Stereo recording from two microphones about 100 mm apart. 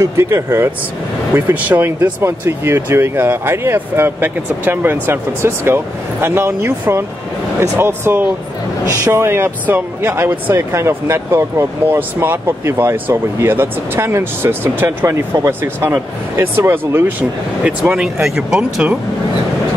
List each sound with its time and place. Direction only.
0.0 s speech: 25° right (ahead or behind); by 18.9 s 10° right (ahead or behind)